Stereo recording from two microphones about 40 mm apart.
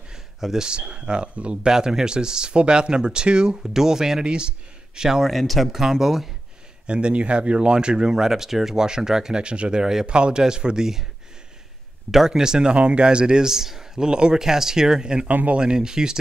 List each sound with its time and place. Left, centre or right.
0.1 s a sound: centre
0.7 s speech: right
1.7 s speech: centre
5.3 s speech: centre
5.8 s speech: centre
6.9 s speech: right
9.4 s speech: right
12.3 s speech: centre
15.2 s speech: right
15.6 s speech: centre